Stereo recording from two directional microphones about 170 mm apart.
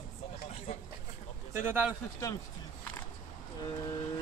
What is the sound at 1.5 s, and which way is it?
Speech, 10° right (ahead or behind).